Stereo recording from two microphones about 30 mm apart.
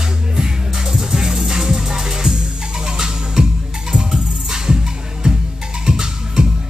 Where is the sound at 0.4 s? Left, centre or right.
Centre.